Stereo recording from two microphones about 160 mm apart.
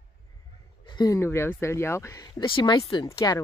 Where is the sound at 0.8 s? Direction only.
25° left (ahead or behind).